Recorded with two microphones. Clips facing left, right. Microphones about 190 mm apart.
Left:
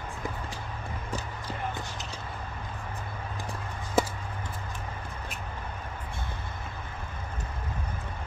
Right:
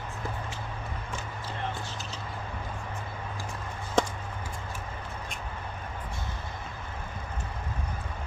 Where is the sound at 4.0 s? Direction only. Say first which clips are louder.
Even; 5° left (ahead or behind).